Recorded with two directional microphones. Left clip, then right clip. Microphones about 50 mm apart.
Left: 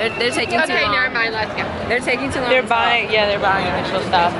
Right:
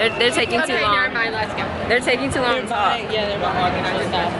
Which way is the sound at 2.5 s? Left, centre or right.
Left.